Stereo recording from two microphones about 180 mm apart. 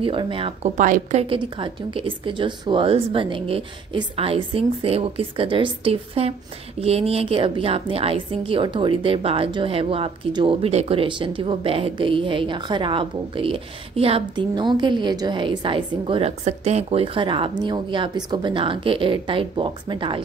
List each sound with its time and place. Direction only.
0.0 s speech: 30° right (ahead or behind); by 1.2 s 45° right (ahead or behind)
1.2 s a woman's voice: 30° right (ahead or behind)